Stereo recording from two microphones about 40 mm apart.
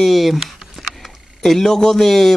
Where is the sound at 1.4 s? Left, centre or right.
Centre.